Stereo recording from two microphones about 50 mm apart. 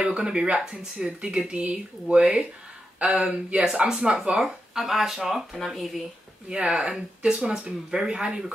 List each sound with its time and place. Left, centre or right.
0.0 s speech: centre
6.5 s speech: centre